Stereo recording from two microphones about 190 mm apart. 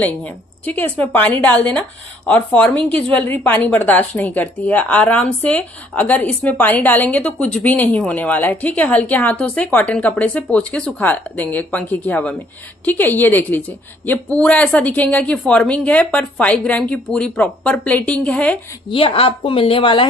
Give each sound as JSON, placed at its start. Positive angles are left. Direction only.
{"t": 0.0, "sound": "a woman's voice", "side_deg": 10}
{"t": 18.9, "sound": "a woman's voice", "side_deg": 30}